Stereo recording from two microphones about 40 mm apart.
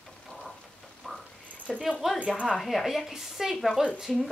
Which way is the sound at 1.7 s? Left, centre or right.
Centre.